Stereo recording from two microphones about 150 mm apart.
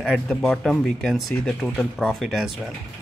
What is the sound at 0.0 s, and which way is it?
Speech, centre (ahead or behind).